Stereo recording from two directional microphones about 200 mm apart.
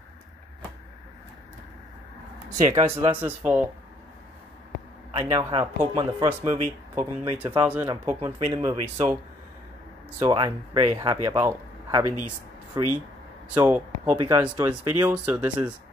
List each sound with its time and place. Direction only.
2.5 s speech: 30° right (ahead or behind)
3.2 s speech: 10° right (ahead or behind)
5.1 s speech: 20° right (ahead or behind)
7.3 s speech: 10° right (ahead or behind)
10.2 s speech: 20° right (ahead or behind)
14.1 s speech: 25° right (ahead or behind)
14.4 s speech: 10° right (ahead or behind)